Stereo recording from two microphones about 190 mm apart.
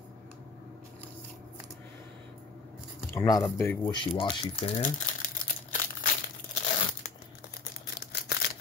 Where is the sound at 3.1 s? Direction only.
15° left (ahead or behind).